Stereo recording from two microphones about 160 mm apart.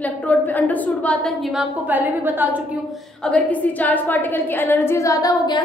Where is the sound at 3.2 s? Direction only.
10° left (ahead or behind); by 5.6 s 25° left (ahead or behind).